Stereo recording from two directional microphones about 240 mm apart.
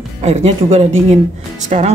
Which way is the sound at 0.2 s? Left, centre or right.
Right.